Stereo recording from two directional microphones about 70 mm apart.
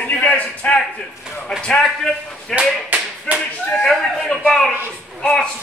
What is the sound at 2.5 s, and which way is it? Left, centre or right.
Clapping, right.